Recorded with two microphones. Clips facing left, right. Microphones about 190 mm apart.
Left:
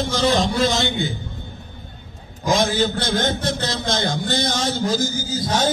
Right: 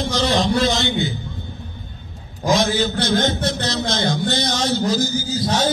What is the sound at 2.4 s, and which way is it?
A man's voice, 50° left (ahead or behind).